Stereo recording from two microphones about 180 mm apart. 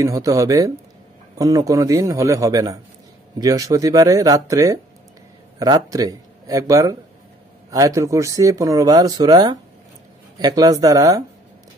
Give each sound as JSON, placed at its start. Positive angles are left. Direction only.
{"t": 0.0, "sound": "a man's voice", "side_deg": -20}